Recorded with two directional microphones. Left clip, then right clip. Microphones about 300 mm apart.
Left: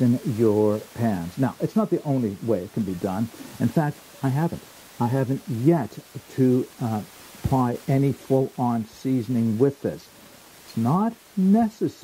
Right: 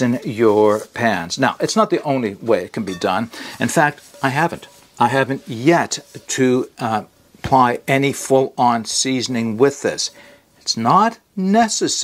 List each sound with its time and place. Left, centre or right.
0.0 s speech: centre